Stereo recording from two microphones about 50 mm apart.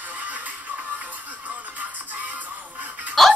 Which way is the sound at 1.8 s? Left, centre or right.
Right.